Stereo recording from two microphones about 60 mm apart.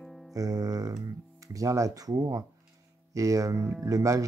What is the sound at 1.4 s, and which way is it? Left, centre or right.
Speech, right.